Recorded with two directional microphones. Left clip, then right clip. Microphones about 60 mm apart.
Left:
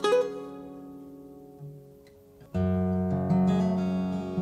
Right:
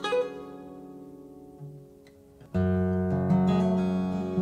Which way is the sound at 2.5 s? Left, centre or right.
Centre.